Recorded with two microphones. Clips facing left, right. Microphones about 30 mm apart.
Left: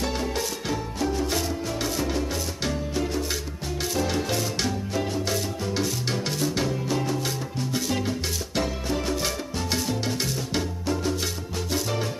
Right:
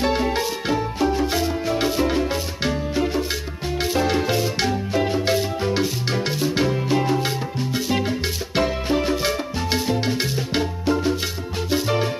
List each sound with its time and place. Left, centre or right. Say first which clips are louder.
0.0 s music: right 7 dB; right